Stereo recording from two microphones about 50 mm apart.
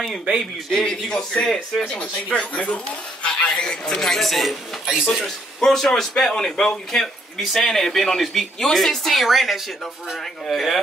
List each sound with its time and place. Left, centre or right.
0.0 s speech: centre
4.8 s speech: centre
5.1 s speech: centre